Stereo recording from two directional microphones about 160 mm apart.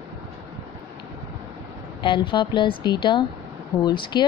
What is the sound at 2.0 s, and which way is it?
Speech, 30° left (ahead or behind).